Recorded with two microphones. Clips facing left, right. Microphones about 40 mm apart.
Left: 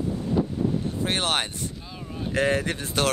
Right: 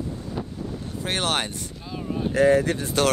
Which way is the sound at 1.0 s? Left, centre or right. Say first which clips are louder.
Right 2 dB; left.